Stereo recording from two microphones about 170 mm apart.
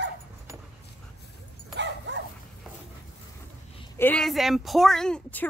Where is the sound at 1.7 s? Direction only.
90° right.